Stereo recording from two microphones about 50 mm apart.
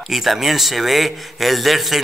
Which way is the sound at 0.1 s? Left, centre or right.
Centre.